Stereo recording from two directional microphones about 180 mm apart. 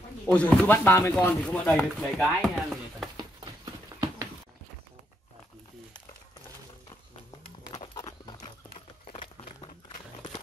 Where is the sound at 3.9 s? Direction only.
20° right (ahead or behind).